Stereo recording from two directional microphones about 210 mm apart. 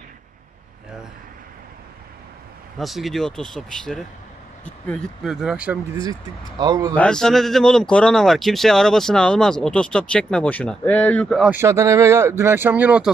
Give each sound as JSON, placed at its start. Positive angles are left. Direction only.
{"t": 2.8, "sound": "a man's voice", "side_deg": 0}
{"t": 6.6, "sound": "speech", "side_deg": -20}
{"t": 6.9, "sound": "a man's voice", "side_deg": 5}